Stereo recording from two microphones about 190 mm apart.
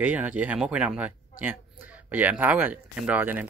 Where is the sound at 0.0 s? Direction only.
10° right (ahead or behind).